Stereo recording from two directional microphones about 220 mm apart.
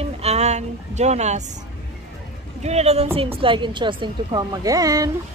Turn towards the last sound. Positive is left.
turn(degrees=-15)  # may be behind; listen again after turning